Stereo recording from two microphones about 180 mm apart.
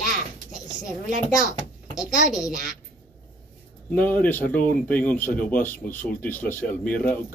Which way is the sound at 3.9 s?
10° left (ahead or behind).